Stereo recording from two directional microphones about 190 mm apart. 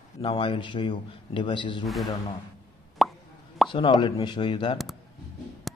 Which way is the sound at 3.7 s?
25° left (ahead or behind).